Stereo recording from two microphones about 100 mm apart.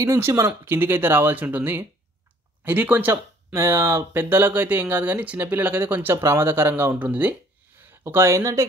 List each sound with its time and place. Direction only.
0.0 s speech: 30° right (ahead or behind)